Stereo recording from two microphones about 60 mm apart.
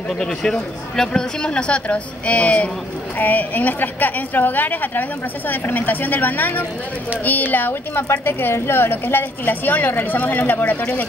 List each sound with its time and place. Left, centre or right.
0.2 s a woman's voice: centre; by 10.8 s left